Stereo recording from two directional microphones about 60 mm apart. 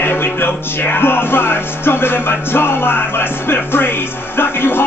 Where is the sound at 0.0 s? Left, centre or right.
Left.